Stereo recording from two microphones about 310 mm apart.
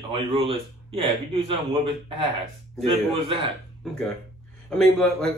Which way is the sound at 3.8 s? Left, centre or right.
Centre.